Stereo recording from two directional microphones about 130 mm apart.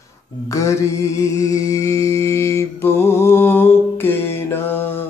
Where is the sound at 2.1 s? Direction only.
20° left (ahead or behind).